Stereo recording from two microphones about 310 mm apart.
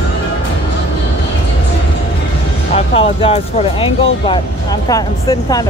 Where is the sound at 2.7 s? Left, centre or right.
Centre.